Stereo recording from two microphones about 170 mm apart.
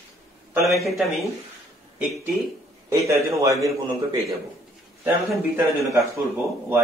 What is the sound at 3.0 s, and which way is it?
A man's voice, 20° right (ahead or behind).